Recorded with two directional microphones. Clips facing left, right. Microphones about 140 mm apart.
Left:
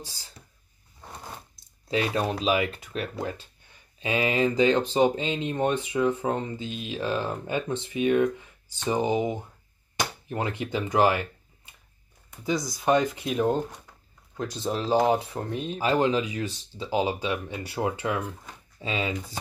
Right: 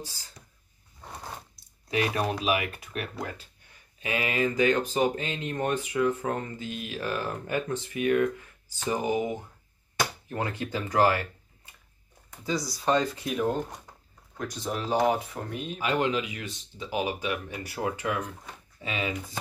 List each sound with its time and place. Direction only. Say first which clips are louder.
1.9 s speech: left 1 dB; 25° left (ahead or behind)
12.4 s speech: left 3 dB; 20° left (ahead or behind)